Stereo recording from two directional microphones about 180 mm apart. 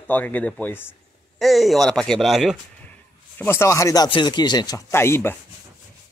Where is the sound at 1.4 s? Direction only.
Centre (ahead or behind).